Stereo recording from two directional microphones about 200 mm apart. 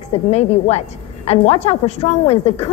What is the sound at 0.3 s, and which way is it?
A woman's voice, 30° left (ahead or behind).